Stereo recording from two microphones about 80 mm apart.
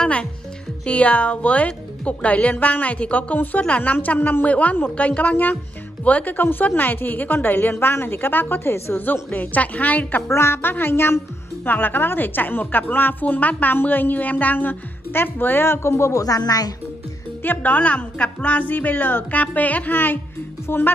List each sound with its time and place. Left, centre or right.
0.0 s music: centre
0.8 s a woman's voice: centre
10.3 s a woman's voice: left
17.4 s a woman's voice: left